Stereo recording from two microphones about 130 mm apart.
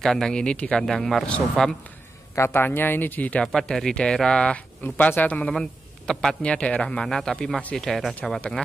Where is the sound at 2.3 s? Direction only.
20° left (ahead or behind).